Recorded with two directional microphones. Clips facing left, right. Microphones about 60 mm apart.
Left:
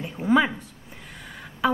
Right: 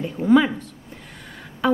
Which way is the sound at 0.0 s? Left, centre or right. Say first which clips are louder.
Right 4 dB; centre.